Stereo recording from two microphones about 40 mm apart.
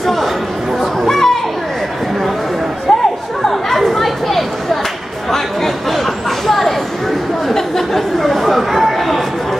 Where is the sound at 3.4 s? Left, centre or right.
Centre.